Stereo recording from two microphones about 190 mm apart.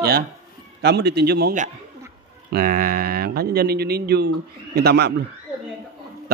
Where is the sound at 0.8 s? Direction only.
60° right (ahead or behind).